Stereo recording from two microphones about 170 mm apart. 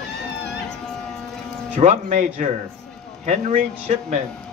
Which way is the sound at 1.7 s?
45° right (ahead or behind).